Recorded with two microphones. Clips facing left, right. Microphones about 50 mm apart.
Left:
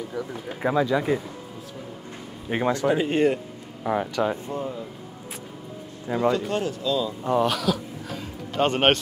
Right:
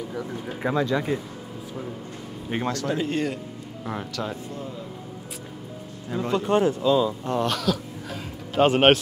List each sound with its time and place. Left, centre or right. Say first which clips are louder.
0.1 s speech: even; centre
2.5 s speech: left 4 dB; centre
6.0 s speech: left 6 dB; left
6.3 s speech: right 4 dB; right
7.2 s music: left 2 dB; centre